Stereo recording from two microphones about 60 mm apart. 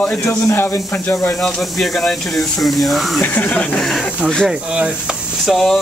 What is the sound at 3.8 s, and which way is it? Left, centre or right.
Speech, centre.